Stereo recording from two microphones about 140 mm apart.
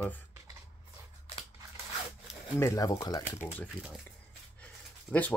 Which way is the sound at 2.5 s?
25° left (ahead or behind).